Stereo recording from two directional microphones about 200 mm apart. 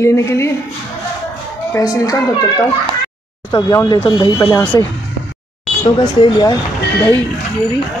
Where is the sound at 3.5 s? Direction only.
20° left (ahead or behind).